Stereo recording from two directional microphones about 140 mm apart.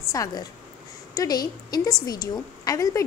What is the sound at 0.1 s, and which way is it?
A woman's voice, 25° left (ahead or behind).